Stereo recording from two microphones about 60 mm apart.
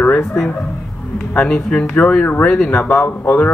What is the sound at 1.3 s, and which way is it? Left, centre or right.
Speech, centre.